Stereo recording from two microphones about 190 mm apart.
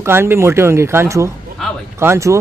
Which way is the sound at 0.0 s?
15° right (ahead or behind).